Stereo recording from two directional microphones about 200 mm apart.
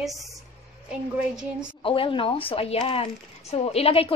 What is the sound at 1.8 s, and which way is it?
A woman's voice, 25° left (ahead or behind).